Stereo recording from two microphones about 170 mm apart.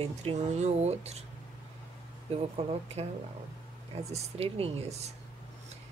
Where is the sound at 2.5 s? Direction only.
35° right (ahead or behind).